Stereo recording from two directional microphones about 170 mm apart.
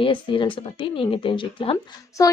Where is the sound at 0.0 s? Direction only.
30° left (ahead or behind).